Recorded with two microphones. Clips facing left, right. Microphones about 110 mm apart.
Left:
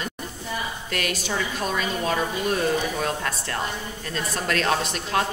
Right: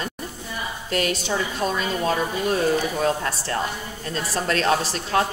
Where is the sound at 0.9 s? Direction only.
30° right (ahead or behind).